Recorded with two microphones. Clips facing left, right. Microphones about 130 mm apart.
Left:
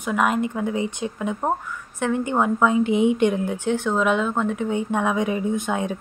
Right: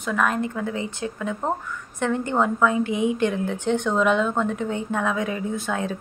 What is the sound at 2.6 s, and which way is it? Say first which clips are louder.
Speech: left 3 dB; 20° left (ahead or behind).